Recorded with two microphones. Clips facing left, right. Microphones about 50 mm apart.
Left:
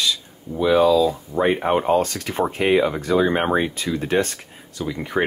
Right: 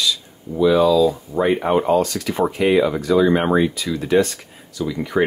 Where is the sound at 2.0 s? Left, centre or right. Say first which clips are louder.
Right 2 dB; left.